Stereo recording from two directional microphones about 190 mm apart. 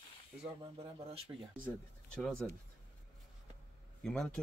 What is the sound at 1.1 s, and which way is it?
Speech, 30° right (ahead or behind).